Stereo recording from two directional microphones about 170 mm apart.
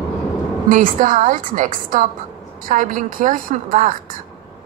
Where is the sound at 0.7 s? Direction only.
50° right (ahead or behind).